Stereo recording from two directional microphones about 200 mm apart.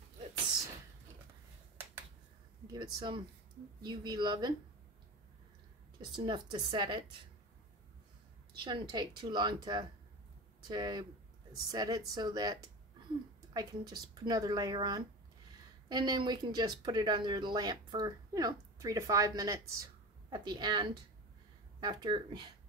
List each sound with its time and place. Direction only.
2.6 s speech: 20° right (ahead or behind)
5.9 s speech: 20° right (ahead or behind)
8.5 s speech: 20° right (ahead or behind)